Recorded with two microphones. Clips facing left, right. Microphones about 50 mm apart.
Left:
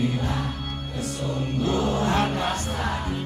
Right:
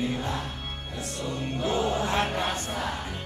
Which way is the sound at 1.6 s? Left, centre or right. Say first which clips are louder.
Left 2 dB; centre.